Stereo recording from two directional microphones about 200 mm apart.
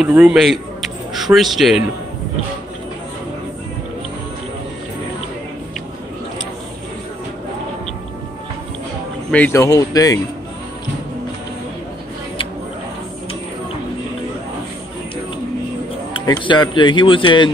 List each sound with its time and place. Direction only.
0.0 s speech: 5° right (ahead or behind)
9.3 s speech: 10° left (ahead or behind)
16.1 s a man's voice: 20° left (ahead or behind)